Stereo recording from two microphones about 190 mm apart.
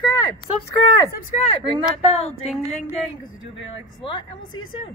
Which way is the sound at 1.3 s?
35° left (ahead or behind).